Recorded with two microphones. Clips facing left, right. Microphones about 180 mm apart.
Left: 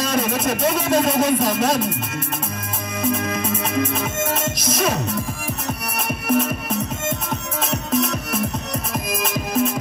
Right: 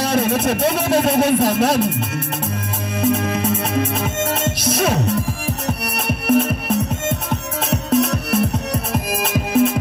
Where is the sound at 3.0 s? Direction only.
65° right (ahead or behind).